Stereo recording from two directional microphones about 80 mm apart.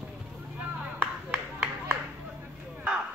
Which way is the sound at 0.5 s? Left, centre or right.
Centre.